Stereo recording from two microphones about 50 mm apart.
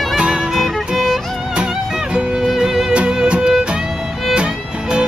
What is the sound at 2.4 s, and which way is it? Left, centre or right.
Music, centre.